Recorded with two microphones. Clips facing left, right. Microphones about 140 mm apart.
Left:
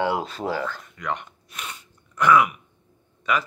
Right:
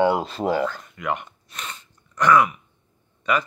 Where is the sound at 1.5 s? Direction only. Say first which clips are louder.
Right 1 dB; 10° left (ahead or behind).